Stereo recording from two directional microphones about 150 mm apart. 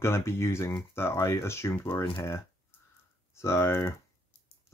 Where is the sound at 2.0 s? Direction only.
35° left (ahead or behind).